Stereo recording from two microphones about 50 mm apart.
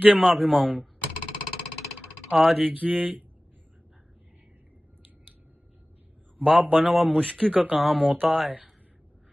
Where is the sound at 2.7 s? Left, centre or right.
Right.